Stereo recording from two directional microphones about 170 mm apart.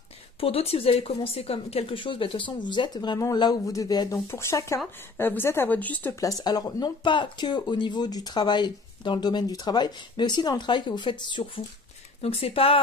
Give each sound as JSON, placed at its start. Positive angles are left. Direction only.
{"t": 0.4, "sound": "speech", "side_deg": 35}
{"t": 6.2, "sound": "speech", "side_deg": 20}